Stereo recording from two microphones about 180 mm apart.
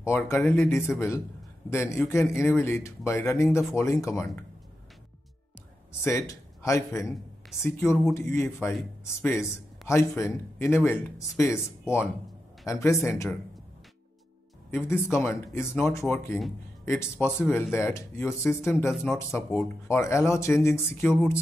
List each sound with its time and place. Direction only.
0.0 s speech: 15° left (ahead or behind)
6.0 s speech: 15° left (ahead or behind)
14.9 s speech: 15° left (ahead or behind)
21.0 s music: centre (ahead or behind)